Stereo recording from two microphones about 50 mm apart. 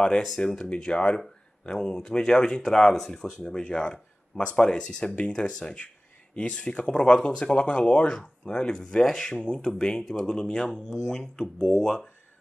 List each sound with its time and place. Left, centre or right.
0.4 s speech: centre